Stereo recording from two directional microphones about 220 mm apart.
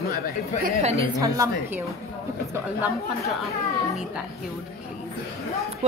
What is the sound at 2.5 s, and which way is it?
Speech, 5° right (ahead or behind).